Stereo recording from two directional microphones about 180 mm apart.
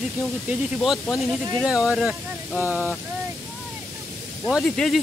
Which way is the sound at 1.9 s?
Centre (ahead or behind).